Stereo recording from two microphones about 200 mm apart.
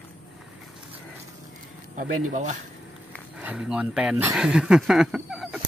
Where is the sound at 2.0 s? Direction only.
40° right (ahead or behind).